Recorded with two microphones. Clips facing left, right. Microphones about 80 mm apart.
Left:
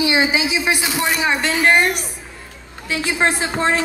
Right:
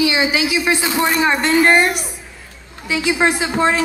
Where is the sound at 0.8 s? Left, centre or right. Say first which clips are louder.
Right 3 dB; centre.